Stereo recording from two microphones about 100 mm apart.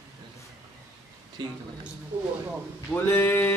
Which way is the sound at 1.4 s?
50° right (ahead or behind).